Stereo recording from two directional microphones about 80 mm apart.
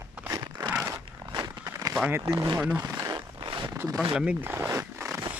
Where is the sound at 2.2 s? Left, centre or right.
Right.